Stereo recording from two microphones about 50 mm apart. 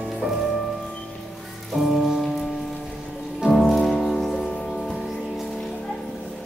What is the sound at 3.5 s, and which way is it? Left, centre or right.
Music, centre.